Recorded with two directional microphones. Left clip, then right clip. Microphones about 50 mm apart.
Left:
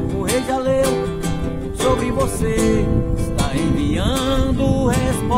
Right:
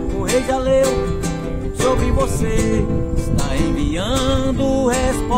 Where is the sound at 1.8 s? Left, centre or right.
Left.